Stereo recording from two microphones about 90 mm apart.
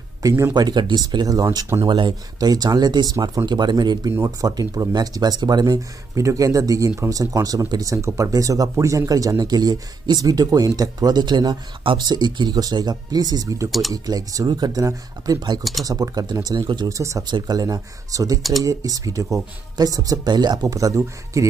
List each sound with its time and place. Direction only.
0.2 s speech: 35° right (ahead or behind)
0.6 s speech: 55° right (ahead or behind)
1.9 s speech: 55° right (ahead or behind)
4.1 s speech: 40° right (ahead or behind)
13.7 s speech: centre (ahead or behind)
13.9 s speech: 45° right (ahead or behind)
15.6 s speech: centre (ahead or behind)
15.9 s speech: 45° right (ahead or behind)
16.9 s speech: 35° right (ahead or behind)
17.3 s speech: 50° right (ahead or behind)